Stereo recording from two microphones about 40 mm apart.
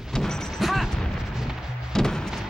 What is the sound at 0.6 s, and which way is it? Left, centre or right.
Artillery fire, centre.